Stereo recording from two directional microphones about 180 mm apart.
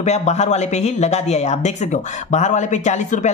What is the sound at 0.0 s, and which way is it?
Speech, 40° left (ahead or behind).